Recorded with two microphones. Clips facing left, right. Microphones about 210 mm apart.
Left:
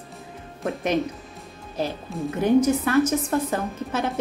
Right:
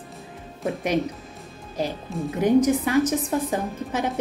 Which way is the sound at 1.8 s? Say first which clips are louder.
Even; 15° right (ahead or behind).